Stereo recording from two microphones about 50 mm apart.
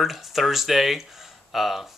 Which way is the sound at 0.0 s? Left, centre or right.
Centre.